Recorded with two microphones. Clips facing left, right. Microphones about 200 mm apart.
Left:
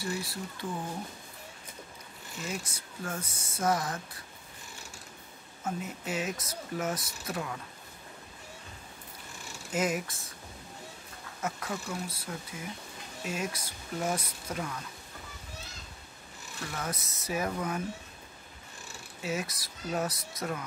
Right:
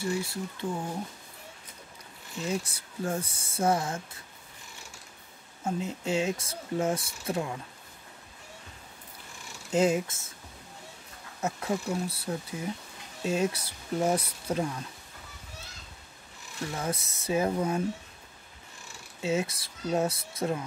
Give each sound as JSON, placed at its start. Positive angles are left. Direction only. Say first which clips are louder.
{"t": 0.0, "sound": "speech", "louder": "right 4 dB", "side_deg": -25}
{"t": 2.4, "sound": "speech", "louder": "right 6 dB", "side_deg": -30}
{"t": 5.6, "sound": "speech", "louder": "right 4 dB", "side_deg": -25}
{"t": 9.7, "sound": "speech", "louder": "right 6 dB", "side_deg": -30}
{"t": 11.4, "sound": "speech", "louder": "right 5 dB", "side_deg": -30}
{"t": 16.7, "sound": "speech", "louder": "right 3 dB", "side_deg": -30}
{"t": 19.2, "sound": "speech", "louder": "right 6 dB", "side_deg": -25}